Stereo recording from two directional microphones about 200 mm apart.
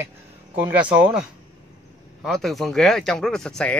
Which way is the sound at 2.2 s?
Centre (ahead or behind).